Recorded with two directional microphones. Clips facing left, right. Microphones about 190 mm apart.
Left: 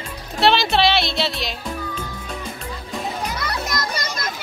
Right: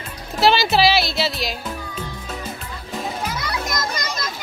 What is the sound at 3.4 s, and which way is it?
Children playing, 55° left (ahead or behind).